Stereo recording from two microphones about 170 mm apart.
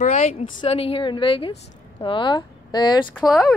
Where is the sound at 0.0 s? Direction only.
45° left (ahead or behind); by 3.1 s 25° left (ahead or behind).